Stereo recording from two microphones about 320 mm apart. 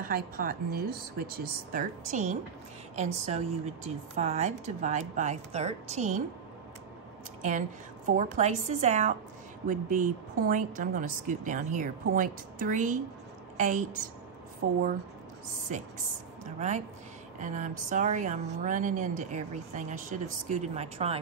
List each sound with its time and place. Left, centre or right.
0.0 s a woman's voice: right
8.2 s a woman's voice: right